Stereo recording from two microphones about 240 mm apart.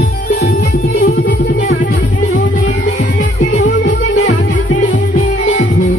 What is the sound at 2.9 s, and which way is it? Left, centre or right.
Music, left.